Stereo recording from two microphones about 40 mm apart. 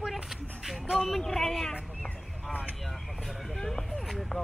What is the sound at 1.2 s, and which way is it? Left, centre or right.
Speech, centre.